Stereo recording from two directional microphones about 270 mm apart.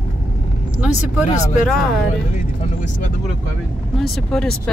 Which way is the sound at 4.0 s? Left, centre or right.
Centre.